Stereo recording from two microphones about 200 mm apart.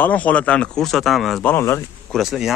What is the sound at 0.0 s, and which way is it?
Speech, 5° left (ahead or behind).